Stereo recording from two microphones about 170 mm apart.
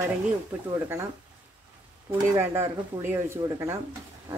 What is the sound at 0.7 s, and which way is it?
Speech, 15° right (ahead or behind).